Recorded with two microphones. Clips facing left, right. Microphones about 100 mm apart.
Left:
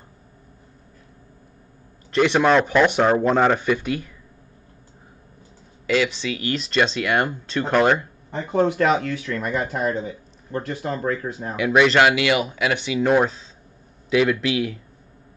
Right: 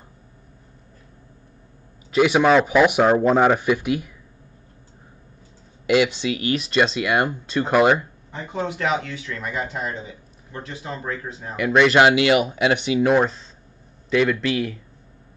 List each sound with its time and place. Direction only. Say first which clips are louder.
2.1 s speech: right 1 dB; 5° right (ahead or behind)
5.9 s speech: right 3 dB; 15° right (ahead or behind)
8.3 s speech: left 7 dB; 50° left (ahead or behind)
11.6 s speech: even; 5° left (ahead or behind)
12.0 s speech: right 2 dB; 25° right (ahead or behind)
13.0 s speech: left 2 dB; centre (ahead or behind)